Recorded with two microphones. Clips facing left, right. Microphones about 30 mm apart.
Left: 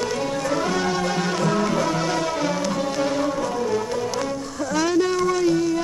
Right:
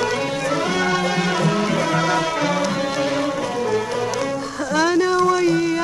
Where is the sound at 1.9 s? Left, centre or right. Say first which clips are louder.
Right 4 dB; right.